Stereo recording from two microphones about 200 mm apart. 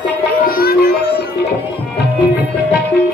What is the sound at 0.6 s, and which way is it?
Music, 50° left (ahead or behind).